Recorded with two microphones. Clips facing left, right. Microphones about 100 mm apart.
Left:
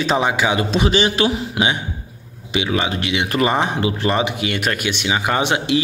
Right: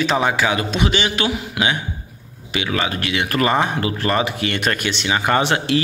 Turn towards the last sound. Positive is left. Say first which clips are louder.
# right 1 dB
turn(degrees=15)  # may be behind; listen again after turning